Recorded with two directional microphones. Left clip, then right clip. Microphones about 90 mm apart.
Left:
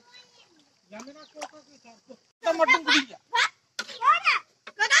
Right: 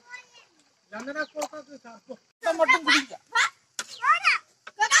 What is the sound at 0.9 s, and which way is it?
Speech, 25° right (ahead or behind).